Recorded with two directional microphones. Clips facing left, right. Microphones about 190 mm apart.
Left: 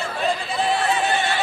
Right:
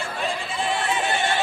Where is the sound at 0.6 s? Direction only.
40° left (ahead or behind).